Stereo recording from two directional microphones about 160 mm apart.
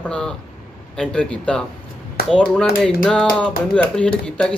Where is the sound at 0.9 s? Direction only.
5° left (ahead or behind).